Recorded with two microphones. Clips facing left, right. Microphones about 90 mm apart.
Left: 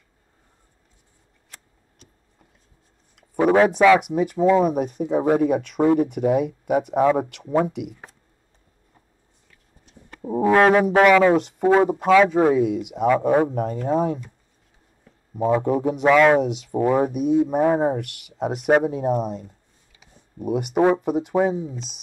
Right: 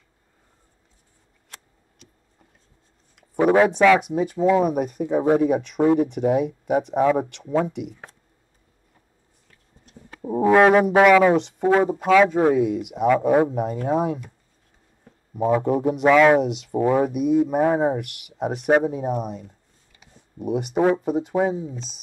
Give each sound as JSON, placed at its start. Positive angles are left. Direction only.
{"t": 3.3, "sound": "speech", "side_deg": 0}
{"t": 4.7, "sound": "speech", "side_deg": -50}
{"t": 5.4, "sound": "speech", "side_deg": 0}
{"t": 9.8, "sound": "speech", "side_deg": 0}
{"t": 15.3, "sound": "speech", "side_deg": -5}